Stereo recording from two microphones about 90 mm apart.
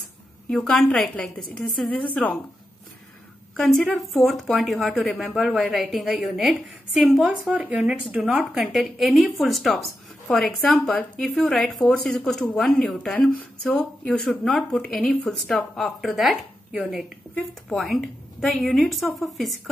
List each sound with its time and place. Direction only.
0.5 s a woman's voice: 5° left (ahead or behind)
3.5 s a woman's voice: 5° left (ahead or behind)
13.4 s a woman's voice: 15° left (ahead or behind); by 19.6 s centre (ahead or behind)